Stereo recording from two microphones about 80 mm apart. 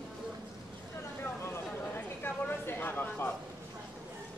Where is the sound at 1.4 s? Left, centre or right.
Left.